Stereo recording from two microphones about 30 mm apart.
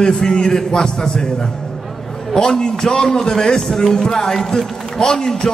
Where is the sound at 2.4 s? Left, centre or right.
Left.